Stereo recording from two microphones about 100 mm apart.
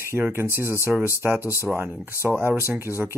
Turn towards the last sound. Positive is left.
turn(degrees=-25)  # may be behind; listen again after turning